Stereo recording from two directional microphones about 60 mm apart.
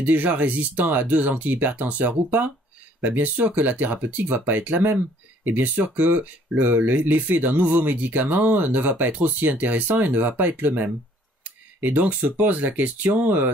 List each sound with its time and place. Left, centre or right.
0.0 s speech: right
3.3 s speech: right